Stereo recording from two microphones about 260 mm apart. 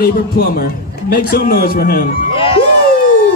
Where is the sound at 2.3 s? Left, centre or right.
Left.